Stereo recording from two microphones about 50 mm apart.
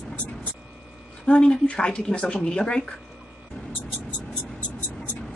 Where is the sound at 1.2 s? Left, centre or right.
Centre.